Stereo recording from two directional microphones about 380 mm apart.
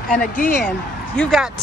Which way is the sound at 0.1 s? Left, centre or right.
Centre.